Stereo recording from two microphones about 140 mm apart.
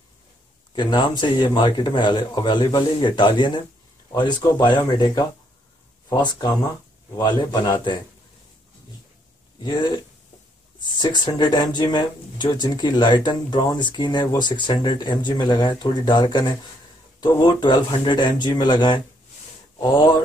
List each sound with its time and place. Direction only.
0.7 s speech: 30° left (ahead or behind)
6.2 s a man's voice: 30° left (ahead or behind)
9.6 s a man's voice: 30° left (ahead or behind)